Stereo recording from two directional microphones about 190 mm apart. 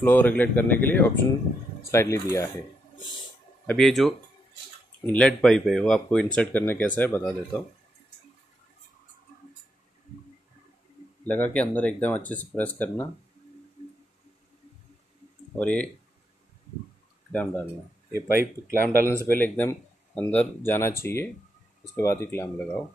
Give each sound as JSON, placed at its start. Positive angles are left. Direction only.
{"t": 0.0, "sound": "speech", "side_deg": 10}
{"t": 3.6, "sound": "speech", "side_deg": 0}
{"t": 11.2, "sound": "speech", "side_deg": 5}
{"t": 15.6, "sound": "speech", "side_deg": 5}
{"t": 17.3, "sound": "speech", "side_deg": 10}
{"t": 18.1, "sound": "speech", "side_deg": -15}
{"t": 19.2, "sound": "speech", "side_deg": 10}